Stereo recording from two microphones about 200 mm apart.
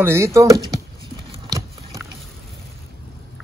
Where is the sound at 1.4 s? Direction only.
20° right (ahead or behind).